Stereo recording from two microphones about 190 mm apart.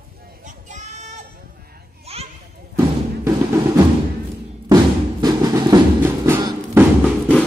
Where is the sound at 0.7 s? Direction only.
40° right (ahead or behind).